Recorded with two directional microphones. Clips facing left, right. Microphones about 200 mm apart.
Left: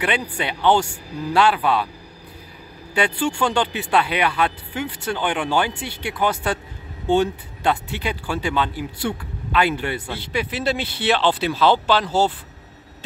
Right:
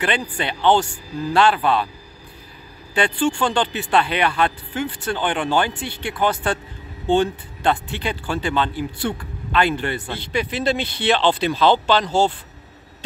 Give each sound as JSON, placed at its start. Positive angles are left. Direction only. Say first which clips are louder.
{"t": 0.0, "sound": "speech", "louder": "even", "side_deg": 10}
{"t": 2.9, "sound": "speech", "louder": "right 2 dB", "side_deg": 10}